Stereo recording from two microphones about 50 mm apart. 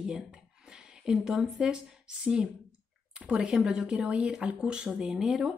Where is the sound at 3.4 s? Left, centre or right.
Centre.